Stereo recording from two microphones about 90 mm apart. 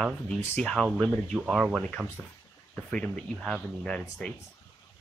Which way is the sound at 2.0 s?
20° right (ahead or behind).